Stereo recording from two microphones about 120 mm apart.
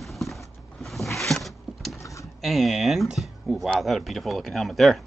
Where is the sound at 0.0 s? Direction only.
Centre (ahead or behind).